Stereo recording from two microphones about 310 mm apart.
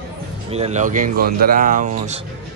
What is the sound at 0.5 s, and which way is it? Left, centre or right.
Speech, right.